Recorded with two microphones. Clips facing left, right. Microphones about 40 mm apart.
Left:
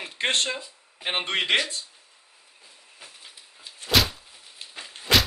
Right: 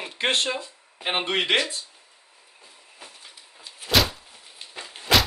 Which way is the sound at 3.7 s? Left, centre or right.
Centre.